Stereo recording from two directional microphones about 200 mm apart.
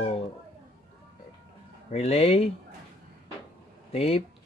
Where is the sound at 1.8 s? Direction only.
35° left (ahead or behind).